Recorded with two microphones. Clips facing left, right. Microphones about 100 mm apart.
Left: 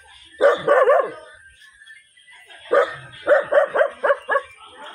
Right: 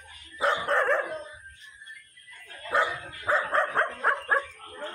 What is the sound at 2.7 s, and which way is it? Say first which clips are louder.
Dog: left 9 dB; 50° left (ahead or behind).